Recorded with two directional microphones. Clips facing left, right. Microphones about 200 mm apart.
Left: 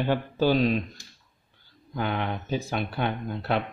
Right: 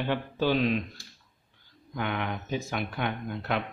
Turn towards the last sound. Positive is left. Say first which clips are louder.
# left 3 dB
turn(degrees=35)  # may be behind; listen again after turning